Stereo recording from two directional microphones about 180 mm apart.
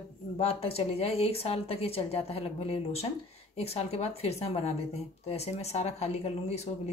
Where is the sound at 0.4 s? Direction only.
35° left (ahead or behind).